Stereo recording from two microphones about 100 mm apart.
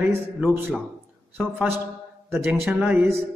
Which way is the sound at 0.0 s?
20° right (ahead or behind).